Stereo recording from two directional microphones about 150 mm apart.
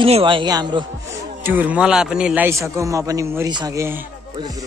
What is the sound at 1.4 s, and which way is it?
A man's voice, 15° right (ahead or behind).